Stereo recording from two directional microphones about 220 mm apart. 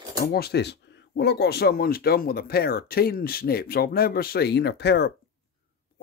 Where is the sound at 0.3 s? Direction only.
45° left (ahead or behind).